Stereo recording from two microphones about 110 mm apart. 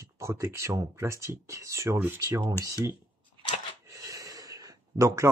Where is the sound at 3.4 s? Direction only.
45° right (ahead or behind).